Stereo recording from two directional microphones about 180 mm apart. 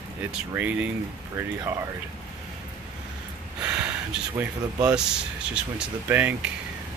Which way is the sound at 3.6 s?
10° right (ahead or behind).